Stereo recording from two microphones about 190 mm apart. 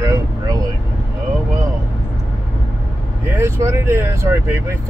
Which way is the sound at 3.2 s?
15° right (ahead or behind).